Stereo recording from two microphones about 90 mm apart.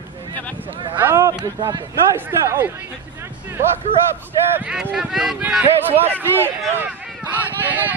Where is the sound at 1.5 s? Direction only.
50° right (ahead or behind).